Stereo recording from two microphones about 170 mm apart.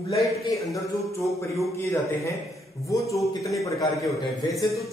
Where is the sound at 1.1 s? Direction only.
15° left (ahead or behind).